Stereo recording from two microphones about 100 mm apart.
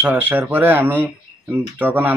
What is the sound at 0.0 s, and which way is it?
Speech, 20° right (ahead or behind).